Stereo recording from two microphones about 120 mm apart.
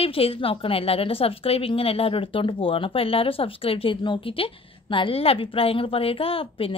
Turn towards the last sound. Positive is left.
turn(degrees=50)  # may be behind; listen again after turning